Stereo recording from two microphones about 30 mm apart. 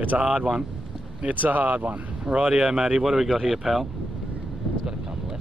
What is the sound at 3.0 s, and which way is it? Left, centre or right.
Speech, centre.